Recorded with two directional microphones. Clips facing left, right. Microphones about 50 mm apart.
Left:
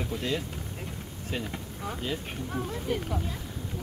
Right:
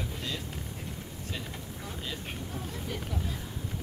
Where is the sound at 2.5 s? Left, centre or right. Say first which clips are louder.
Left 9 dB; left.